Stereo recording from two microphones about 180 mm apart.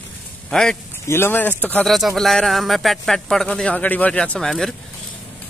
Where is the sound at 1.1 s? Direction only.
10° left (ahead or behind).